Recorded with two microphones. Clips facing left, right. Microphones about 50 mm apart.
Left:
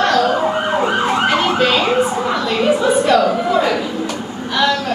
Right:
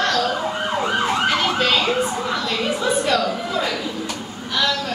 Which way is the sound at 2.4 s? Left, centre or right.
Left.